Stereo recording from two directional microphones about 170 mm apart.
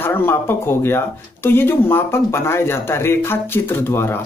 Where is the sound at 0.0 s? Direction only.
15° left (ahead or behind).